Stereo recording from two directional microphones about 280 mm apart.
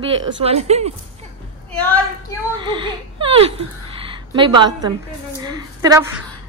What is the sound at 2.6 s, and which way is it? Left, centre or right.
A woman's voice, centre.